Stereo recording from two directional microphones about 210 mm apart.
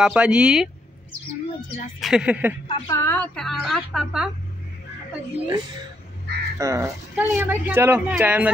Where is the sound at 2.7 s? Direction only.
15° left (ahead or behind); by 4.3 s 5° right (ahead or behind).